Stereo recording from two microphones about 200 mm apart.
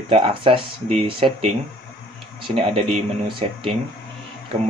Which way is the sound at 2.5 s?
25° right (ahead or behind).